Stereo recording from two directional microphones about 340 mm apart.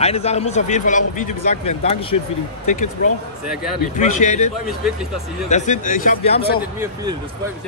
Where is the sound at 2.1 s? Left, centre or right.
Left.